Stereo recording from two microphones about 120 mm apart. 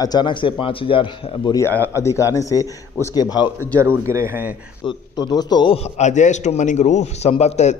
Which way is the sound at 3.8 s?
20° right (ahead or behind).